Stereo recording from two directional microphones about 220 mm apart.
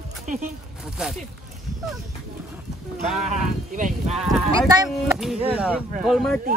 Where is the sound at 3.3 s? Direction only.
35° right (ahead or behind).